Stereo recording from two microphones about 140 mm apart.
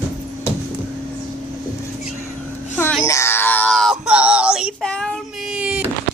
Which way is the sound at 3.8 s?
5° right (ahead or behind).